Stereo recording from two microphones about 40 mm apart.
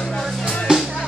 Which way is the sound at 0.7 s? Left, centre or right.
Right.